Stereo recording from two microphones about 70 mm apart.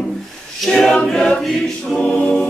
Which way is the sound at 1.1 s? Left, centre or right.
Centre.